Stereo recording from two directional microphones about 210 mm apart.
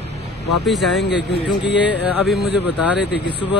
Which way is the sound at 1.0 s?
55° left (ahead or behind).